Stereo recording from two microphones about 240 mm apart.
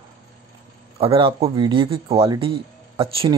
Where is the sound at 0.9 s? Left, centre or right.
Right.